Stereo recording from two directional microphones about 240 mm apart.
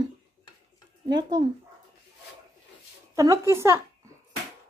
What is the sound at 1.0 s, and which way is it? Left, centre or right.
Speech, centre.